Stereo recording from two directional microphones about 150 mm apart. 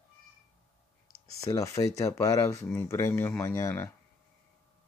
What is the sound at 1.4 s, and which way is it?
Speech, 20° left (ahead or behind).